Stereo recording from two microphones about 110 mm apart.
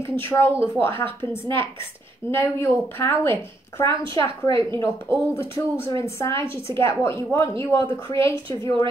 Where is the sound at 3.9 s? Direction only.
50° right (ahead or behind).